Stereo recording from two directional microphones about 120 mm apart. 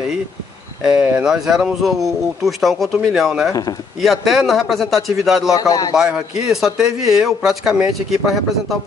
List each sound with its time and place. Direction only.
0.8 s speech: 10° right (ahead or behind)
5.5 s a man's voice: 30° left (ahead or behind)
5.9 s speech: 5° right (ahead or behind)